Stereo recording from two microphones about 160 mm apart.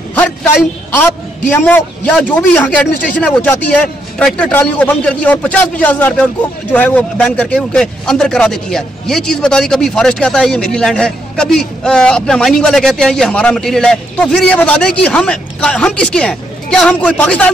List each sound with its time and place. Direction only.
0.1 s a man's voice: 10° left (ahead or behind)
1.5 s a man's voice: 10° left (ahead or behind)